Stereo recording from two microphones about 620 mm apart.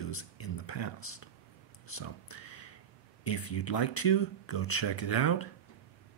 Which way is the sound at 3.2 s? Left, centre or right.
Left.